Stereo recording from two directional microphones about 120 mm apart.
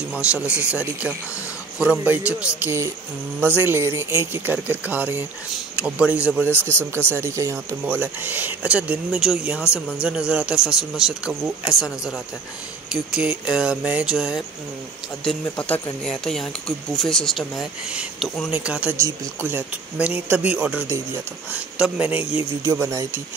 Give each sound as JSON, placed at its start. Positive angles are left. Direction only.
{"t": 0.1, "sound": "speech", "side_deg": -10}
{"t": 7.1, "sound": "speech", "side_deg": -20}
{"t": 9.6, "sound": "speech", "side_deg": 20}
{"t": 10.0, "sound": "speech", "side_deg": -10}
{"t": 15.2, "sound": "speech", "side_deg": 10}
{"t": 18.5, "sound": "speech", "side_deg": -10}
{"t": 20.9, "sound": "speech", "side_deg": -25}
{"t": 21.5, "sound": "speech", "side_deg": -10}
{"t": 22.7, "sound": "speech", "side_deg": -25}